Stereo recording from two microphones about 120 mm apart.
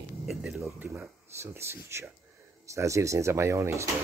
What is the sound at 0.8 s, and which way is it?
Speech, 15° right (ahead or behind).